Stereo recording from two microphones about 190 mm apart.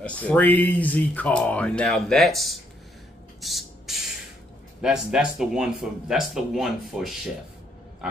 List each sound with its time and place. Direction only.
0.0 s speech: 5° left (ahead or behind)
3.3 s a sound: centre (ahead or behind)
4.8 s speech: 5° right (ahead or behind)